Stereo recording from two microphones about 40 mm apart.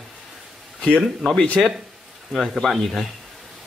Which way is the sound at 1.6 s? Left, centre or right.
Centre.